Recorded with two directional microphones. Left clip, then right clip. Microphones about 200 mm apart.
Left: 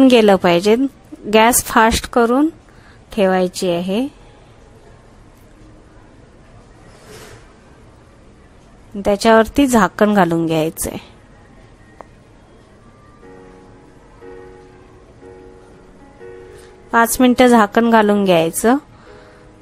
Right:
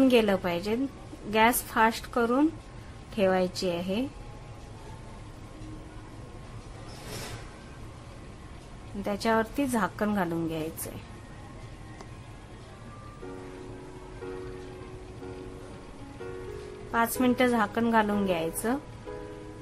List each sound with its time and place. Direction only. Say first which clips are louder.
0.0 s a woman's voice: left 13 dB; 50° left (ahead or behind)
9.0 s a woman's voice: left 15 dB; 45° left (ahead or behind)
16.9 s a woman's voice: left 13 dB; 45° left (ahead or behind)